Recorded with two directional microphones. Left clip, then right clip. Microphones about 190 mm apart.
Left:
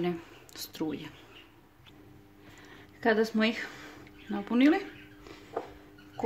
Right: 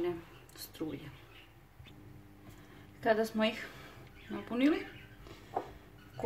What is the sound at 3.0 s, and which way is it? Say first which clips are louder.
Speech: left 4 dB; 50° left (ahead or behind).